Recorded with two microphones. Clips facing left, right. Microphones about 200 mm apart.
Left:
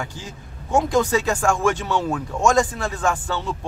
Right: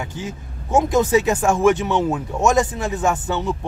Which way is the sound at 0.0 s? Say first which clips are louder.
Right 4 dB; 20° right (ahead or behind).